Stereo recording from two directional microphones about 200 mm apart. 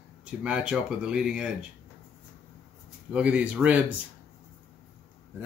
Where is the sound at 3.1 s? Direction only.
5° right (ahead or behind).